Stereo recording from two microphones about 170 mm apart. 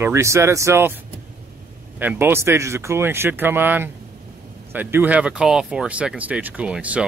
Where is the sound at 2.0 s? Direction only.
10° right (ahead or behind).